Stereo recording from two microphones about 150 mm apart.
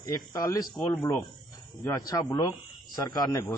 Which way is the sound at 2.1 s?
25° left (ahead or behind).